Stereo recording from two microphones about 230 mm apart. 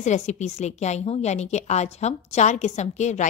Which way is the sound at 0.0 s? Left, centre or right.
Left.